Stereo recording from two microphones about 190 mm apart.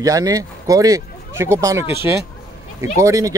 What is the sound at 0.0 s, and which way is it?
Speech, 20° right (ahead or behind).